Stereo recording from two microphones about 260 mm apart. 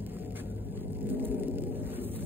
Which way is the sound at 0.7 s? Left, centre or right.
Centre.